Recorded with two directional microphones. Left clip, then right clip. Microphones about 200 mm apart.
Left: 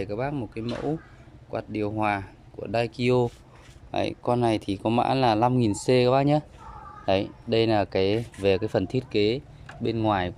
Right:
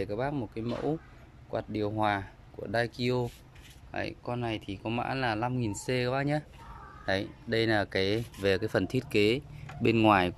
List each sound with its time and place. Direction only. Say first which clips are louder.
0.0 s speech: left 3 dB; 5° left (ahead or behind)